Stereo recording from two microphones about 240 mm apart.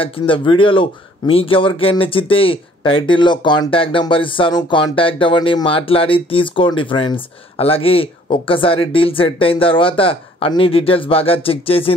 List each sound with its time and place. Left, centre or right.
0.0 s speech: left